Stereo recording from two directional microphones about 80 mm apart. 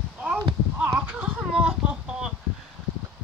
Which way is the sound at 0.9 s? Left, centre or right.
Centre.